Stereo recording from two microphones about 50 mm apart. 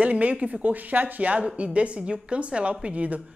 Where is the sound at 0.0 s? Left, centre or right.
Right.